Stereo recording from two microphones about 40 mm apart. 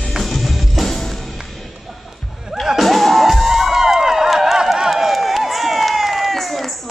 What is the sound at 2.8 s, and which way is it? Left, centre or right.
Music, centre.